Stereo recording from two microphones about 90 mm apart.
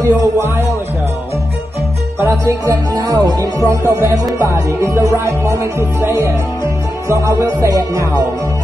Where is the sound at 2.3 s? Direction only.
40° right (ahead or behind).